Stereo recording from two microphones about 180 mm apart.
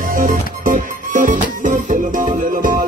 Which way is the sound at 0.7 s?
45° right (ahead or behind).